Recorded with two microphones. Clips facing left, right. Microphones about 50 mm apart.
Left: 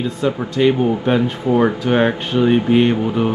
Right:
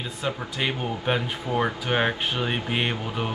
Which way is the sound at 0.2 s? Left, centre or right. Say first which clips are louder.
Left 12 dB; centre.